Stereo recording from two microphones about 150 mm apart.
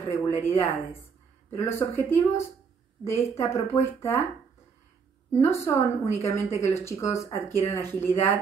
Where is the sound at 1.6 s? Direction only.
15° left (ahead or behind).